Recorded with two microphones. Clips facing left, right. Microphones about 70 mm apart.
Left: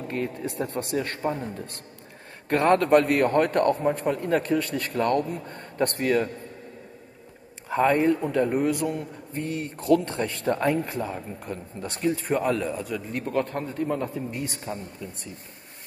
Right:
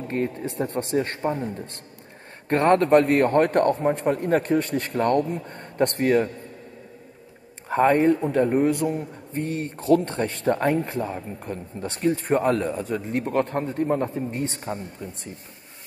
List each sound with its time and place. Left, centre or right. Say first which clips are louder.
0.1 s a man's voice: right 4 dB; right
2.7 s a man's voice: right 2 dB; right
7.7 s a man's voice: right 3 dB; right